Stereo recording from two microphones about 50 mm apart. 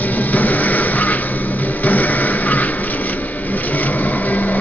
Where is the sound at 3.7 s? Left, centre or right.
Left.